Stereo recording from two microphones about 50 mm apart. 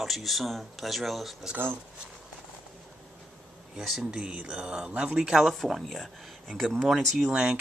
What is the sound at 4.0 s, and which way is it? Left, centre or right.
Speech, centre.